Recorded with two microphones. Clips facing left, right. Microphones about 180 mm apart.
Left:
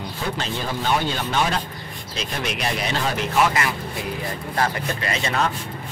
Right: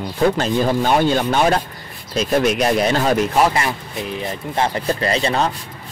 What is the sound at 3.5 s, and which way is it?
Speech, 25° right (ahead or behind).